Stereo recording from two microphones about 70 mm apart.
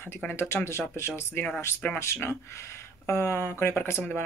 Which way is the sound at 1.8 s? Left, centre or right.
Centre.